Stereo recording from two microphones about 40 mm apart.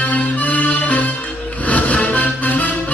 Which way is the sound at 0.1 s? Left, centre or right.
Left.